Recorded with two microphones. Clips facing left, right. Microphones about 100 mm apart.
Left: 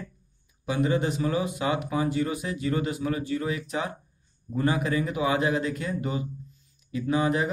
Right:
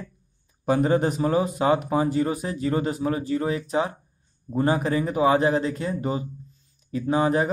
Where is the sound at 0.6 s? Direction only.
45° right (ahead or behind).